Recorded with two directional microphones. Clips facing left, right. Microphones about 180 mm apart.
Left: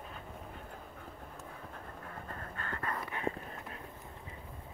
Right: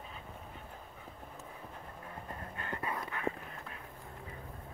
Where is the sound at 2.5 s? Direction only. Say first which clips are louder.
Right 1 dB; 15° right (ahead or behind).